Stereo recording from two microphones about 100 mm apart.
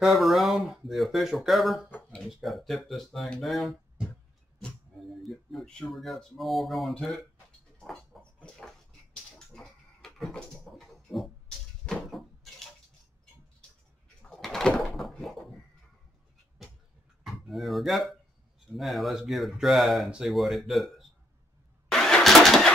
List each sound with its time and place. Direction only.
0.0 s speech: centre (ahead or behind)
1.9 s a sound: 15° left (ahead or behind)
2.1 s speech: centre (ahead or behind)
5.2 s speech: centre (ahead or behind)
7.9 s a sound: 10° left (ahead or behind)
14.3 s a sound: 5° left (ahead or behind)
15.0 s door: centre (ahead or behind)
17.2 s speech: centre (ahead or behind)
21.9 s vehicle: 5° left (ahead or behind)